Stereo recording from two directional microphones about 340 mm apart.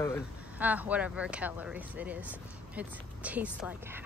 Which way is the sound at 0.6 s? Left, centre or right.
Centre.